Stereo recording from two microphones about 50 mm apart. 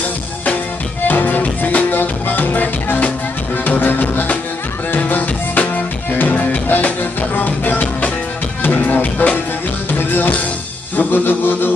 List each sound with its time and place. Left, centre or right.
1.0 s music: left
9.9 s music: left